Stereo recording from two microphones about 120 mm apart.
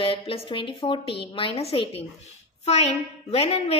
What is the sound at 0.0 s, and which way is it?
A woman's voice, 50° left (ahead or behind).